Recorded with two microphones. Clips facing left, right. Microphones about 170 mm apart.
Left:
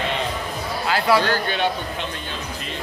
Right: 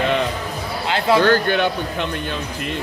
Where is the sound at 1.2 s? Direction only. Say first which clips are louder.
Right 6 dB; 55° right (ahead or behind).